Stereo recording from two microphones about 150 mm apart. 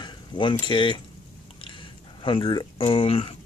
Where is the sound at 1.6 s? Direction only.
35° left (ahead or behind).